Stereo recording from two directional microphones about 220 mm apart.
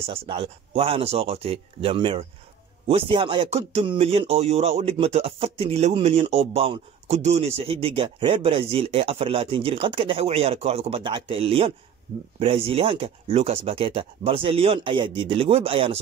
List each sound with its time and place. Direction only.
0.0 s speech: 25° right (ahead or behind)